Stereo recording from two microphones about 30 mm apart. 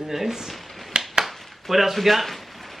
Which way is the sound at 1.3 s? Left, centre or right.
Centre.